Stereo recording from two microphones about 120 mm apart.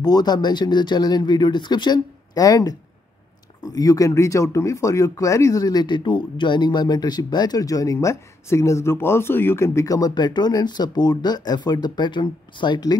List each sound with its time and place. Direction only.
0.0 s speech: 35° left (ahead or behind)